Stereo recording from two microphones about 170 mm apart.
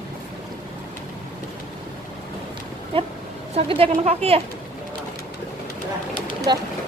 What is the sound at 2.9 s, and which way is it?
Speech, 30° right (ahead or behind).